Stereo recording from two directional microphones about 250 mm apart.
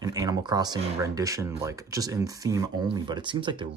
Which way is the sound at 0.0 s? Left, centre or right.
Centre.